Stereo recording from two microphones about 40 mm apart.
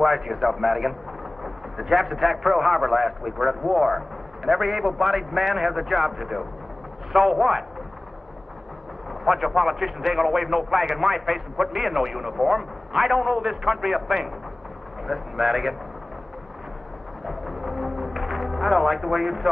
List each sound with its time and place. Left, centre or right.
0.0 s a man's voice: centre
9.2 s a man's voice: centre
17.3 s music: centre